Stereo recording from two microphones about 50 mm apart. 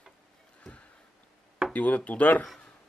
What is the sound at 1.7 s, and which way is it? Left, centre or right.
Speech, left.